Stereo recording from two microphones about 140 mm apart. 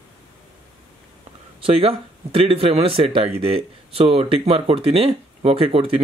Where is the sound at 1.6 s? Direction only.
45° right (ahead or behind).